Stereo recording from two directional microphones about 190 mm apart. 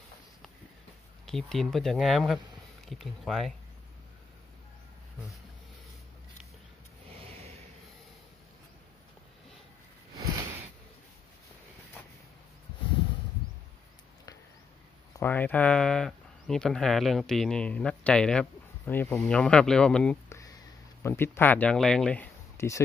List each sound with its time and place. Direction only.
1.2 s speech: centre (ahead or behind)
7.2 s a sound: 30° right (ahead or behind)
15.1 s speech: 10° left (ahead or behind)